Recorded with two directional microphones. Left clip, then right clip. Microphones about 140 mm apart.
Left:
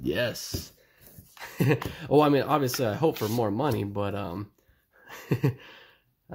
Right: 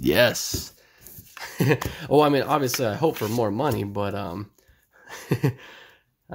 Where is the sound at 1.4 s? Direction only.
10° right (ahead or behind).